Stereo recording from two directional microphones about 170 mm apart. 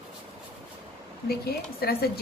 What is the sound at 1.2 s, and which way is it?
Speech, 65° left (ahead or behind).